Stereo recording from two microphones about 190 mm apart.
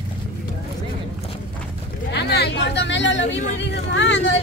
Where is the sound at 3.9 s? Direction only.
75° left (ahead or behind).